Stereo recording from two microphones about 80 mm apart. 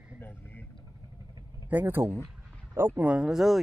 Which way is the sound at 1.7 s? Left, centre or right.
Right.